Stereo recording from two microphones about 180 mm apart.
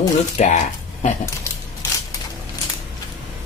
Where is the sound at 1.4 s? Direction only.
20° left (ahead or behind).